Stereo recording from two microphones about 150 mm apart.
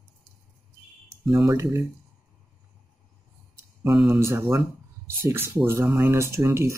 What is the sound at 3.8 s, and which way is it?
Speech, 15° right (ahead or behind).